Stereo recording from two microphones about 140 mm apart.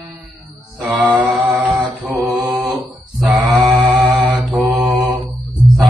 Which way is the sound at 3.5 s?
25° right (ahead or behind).